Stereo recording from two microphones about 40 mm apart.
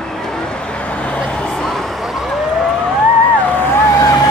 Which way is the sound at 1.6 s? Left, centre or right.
Centre.